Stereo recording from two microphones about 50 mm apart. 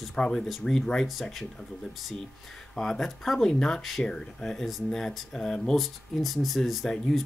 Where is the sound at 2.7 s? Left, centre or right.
Centre.